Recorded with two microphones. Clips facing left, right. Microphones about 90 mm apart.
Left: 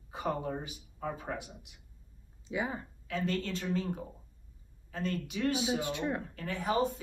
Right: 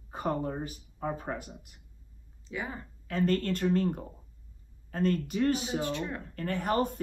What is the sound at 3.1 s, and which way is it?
Speech, 50° right (ahead or behind).